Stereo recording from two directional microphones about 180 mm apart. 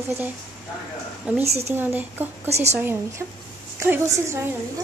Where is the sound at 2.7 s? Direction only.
10° right (ahead or behind).